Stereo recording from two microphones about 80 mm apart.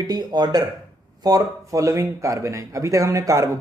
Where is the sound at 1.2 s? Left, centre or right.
Right.